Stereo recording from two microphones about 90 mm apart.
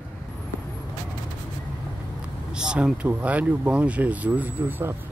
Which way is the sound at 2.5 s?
10° right (ahead or behind).